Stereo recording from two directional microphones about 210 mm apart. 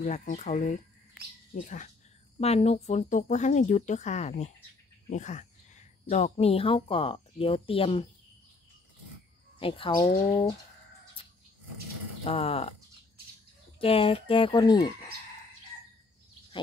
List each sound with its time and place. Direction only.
0.0 s speech: 35° left (ahead or behind)
9.6 s speech: 25° left (ahead or behind)
12.3 s speech: 25° left (ahead or behind)
13.7 s speech: 25° left (ahead or behind)